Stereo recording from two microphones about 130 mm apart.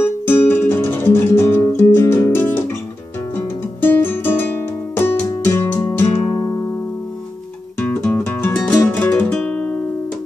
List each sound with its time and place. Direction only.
0.0 s guitar: 15° left (ahead or behind)
3.8 s music: 15° left (ahead or behind)
7.8 s music: 15° left (ahead or behind)